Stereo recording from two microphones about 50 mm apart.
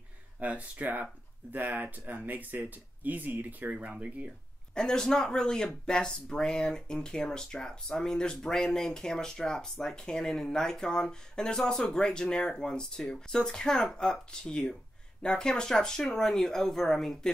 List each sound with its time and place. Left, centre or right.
0.4 s speech: right
3.7 s speech: right
4.7 s speech: centre